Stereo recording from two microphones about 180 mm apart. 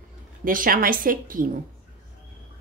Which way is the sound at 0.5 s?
50° right (ahead or behind).